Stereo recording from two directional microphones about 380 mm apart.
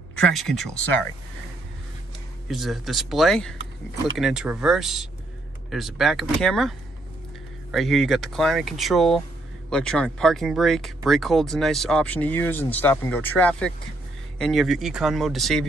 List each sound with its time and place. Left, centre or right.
0.3 s speech: centre
2.4 s speech: centre
7.7 s speech: centre